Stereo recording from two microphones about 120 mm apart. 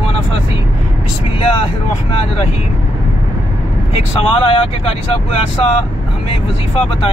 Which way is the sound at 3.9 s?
50° left (ahead or behind).